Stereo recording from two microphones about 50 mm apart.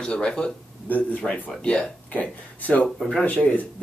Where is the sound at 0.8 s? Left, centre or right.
Left.